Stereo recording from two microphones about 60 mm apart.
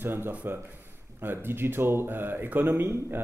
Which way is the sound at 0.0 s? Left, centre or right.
Right.